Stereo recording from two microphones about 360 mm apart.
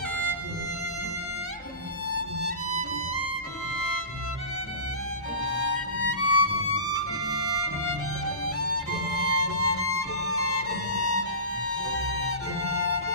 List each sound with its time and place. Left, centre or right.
5.5 s music: left
8.5 s music: left